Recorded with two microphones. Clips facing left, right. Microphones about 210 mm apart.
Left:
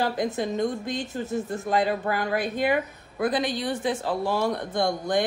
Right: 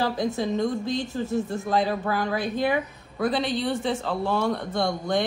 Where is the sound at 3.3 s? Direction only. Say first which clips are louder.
Right 1 dB; 15° left (ahead or behind).